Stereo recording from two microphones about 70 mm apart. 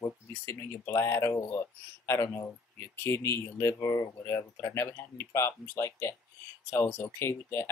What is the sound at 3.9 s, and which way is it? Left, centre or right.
Speech, left.